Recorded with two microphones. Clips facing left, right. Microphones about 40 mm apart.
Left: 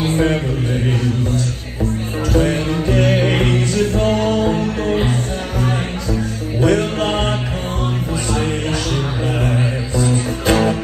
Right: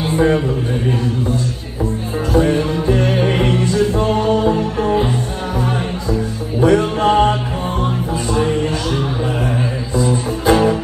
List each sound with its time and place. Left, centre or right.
0.0 s mantra: left
2.3 s music: left
6.1 s music: left
8.4 s music: left